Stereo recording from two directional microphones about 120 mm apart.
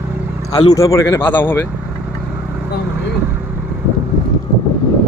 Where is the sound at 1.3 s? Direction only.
15° left (ahead or behind).